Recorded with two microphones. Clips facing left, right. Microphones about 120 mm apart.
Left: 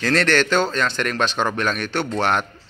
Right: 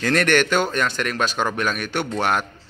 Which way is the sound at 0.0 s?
15° right (ahead or behind).